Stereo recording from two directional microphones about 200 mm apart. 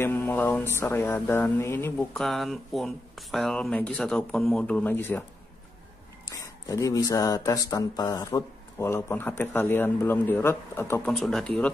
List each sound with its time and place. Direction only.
0.0 s speech: 10° left (ahead or behind)
6.2 s speech: 15° left (ahead or behind)